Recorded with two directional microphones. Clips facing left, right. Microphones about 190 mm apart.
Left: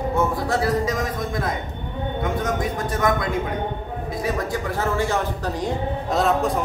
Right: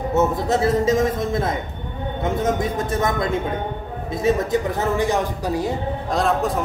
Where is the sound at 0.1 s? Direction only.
20° right (ahead or behind).